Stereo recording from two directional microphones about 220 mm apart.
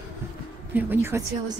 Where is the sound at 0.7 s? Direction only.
10° right (ahead or behind).